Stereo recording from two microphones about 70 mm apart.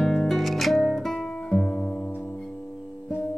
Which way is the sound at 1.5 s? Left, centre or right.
Centre.